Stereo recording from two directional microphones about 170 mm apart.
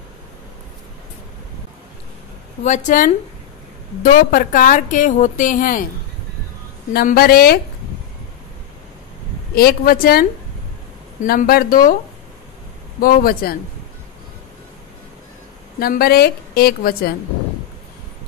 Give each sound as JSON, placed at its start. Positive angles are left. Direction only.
{"t": 2.6, "sound": "a woman's voice", "side_deg": 45}
{"t": 6.9, "sound": "a woman's voice", "side_deg": 65}
{"t": 9.6, "sound": "a woman's voice", "side_deg": 60}
{"t": 11.2, "sound": "a woman's voice", "side_deg": 65}
{"t": 13.0, "sound": "a woman's voice", "side_deg": 60}
{"t": 15.8, "sound": "a woman's voice", "side_deg": 65}